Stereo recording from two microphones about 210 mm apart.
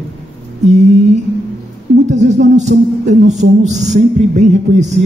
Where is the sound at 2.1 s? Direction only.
35° right (ahead or behind).